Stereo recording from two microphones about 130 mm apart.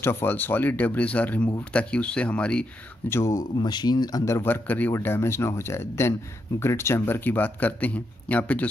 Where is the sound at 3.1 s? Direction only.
25° left (ahead or behind).